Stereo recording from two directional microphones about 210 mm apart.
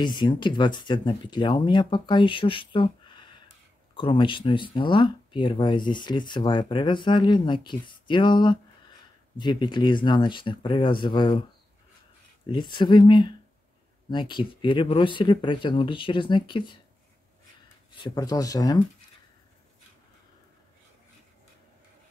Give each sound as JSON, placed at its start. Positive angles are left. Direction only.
{"t": 0.0, "sound": "speech", "side_deg": 20}
{"t": 12.4, "sound": "speech", "side_deg": 20}
{"t": 18.0, "sound": "speech", "side_deg": 15}